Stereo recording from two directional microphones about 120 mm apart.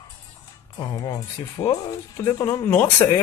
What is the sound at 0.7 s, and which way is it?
Speech, 35° left (ahead or behind).